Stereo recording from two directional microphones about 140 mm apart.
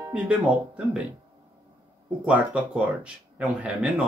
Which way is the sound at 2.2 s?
10° right (ahead or behind).